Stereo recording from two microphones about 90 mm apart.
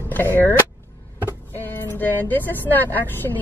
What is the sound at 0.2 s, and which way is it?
Speech, 20° left (ahead or behind).